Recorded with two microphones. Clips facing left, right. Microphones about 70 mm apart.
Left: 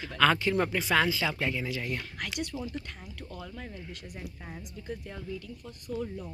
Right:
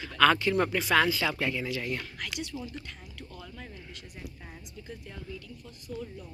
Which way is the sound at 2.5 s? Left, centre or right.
Left.